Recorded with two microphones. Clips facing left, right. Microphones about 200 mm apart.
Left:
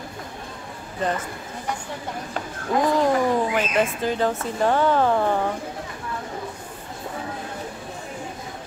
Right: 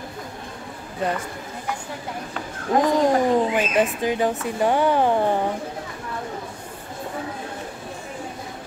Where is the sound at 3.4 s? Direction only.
15° right (ahead or behind).